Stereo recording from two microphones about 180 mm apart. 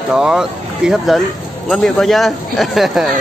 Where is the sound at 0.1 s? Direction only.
5° right (ahead or behind).